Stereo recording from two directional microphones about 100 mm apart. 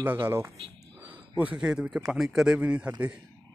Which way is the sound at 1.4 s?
10° right (ahead or behind).